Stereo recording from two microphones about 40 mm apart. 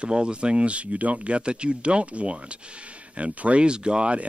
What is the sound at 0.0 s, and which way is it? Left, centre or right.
Speech, right.